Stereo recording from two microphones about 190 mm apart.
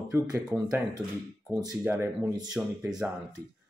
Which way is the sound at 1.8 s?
10° right (ahead or behind).